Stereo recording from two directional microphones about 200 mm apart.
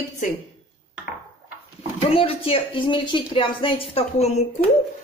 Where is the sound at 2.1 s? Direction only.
30° left (ahead or behind).